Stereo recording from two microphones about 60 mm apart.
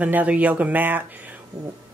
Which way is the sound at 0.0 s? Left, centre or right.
Right.